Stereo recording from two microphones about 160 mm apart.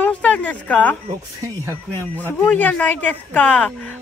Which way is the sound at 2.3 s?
10° left (ahead or behind).